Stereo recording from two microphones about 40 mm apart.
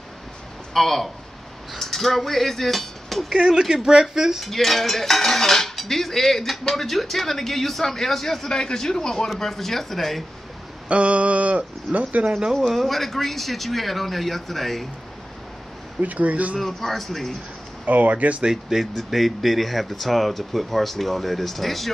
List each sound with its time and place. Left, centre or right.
0.7 s speech: centre
1.7 s cutlery: centre
3.3 s speech: centre
4.5 s cutlery: centre
9.4 s speech: centre
10.9 s speech: right
12.6 s speech: centre
16.0 s speech: right
16.5 s cutlery: centre
17.8 s speech: right
18.4 s speech: centre